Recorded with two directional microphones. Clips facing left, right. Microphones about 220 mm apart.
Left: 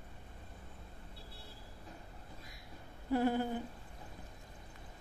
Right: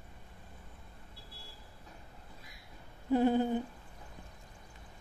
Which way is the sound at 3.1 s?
20° right (ahead or behind).